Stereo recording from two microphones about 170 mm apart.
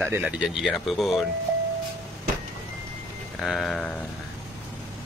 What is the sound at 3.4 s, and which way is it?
Speech, centre (ahead or behind).